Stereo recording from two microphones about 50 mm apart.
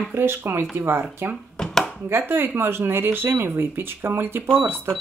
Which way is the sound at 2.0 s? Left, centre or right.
Right.